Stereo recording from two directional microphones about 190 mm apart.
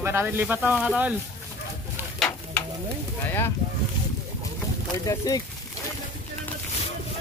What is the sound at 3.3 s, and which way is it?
Speech, 10° left (ahead or behind).